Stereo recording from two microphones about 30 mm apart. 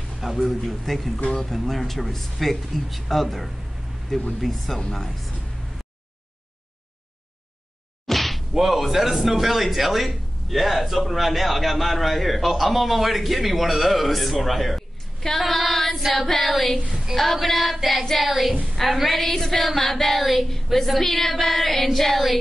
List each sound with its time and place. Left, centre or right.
0.2 s a man's voice: centre
4.1 s a sound: centre
4.7 s speech: centre
8.1 s whack: centre
8.5 s speech: centre
15.3 s female singing: centre
16.0 s speech: centre
19.3 s a sound: centre
19.6 s speech: centre